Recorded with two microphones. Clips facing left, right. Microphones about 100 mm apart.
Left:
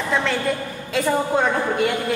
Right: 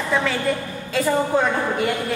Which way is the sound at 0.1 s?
5° right (ahead or behind).